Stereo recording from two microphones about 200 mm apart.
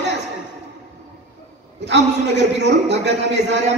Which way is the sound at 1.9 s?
60° right (ahead or behind).